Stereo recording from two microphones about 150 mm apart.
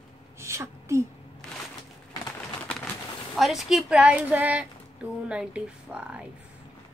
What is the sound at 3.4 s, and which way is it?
A woman's voice, centre (ahead or behind).